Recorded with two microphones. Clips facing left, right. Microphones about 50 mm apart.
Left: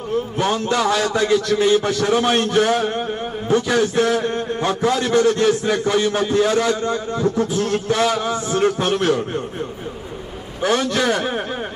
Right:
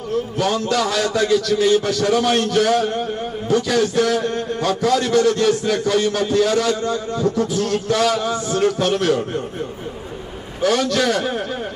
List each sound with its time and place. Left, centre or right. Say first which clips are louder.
0.4 s a man's voice: even; left
10.6 s a man's voice: right 1 dB; left